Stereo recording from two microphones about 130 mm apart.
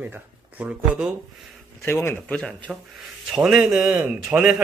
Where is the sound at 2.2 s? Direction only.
5° left (ahead or behind).